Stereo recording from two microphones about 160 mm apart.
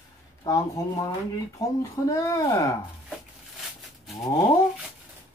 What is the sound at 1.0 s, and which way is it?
Speech, 20° left (ahead or behind).